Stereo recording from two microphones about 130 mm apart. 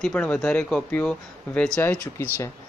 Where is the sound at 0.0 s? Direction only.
10° left (ahead or behind).